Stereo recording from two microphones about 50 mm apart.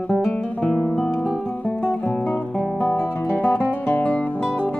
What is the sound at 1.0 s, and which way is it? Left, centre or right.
Music, left.